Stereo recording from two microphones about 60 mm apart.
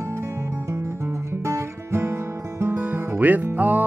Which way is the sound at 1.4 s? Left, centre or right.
Right.